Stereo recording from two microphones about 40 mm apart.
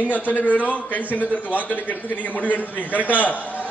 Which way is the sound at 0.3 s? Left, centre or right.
Left.